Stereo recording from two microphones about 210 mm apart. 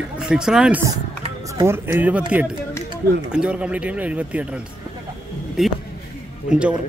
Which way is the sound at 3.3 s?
5° right (ahead or behind).